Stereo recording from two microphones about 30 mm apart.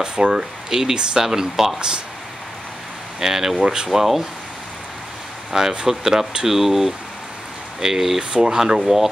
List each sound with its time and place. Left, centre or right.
0.0 s speech: right
3.2 s speech: centre
3.6 s speech: right
3.9 s speech: centre
5.5 s speech: centre